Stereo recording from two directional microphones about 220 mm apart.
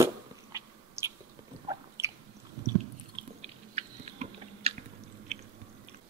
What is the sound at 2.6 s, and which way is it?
Chewing, 25° right (ahead or behind).